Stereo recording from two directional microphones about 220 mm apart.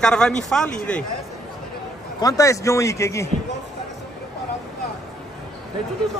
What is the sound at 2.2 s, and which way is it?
A man's voice, 15° left (ahead or behind).